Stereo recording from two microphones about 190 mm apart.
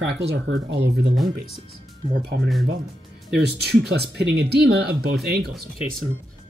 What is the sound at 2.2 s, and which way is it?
Speech, 60° right (ahead or behind).